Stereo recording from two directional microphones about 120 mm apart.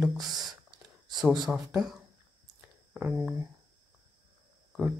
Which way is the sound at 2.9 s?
15° right (ahead or behind).